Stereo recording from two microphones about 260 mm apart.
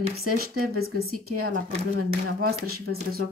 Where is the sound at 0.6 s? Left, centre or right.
Right.